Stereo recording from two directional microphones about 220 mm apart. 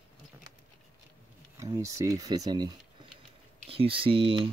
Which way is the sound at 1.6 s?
15° right (ahead or behind).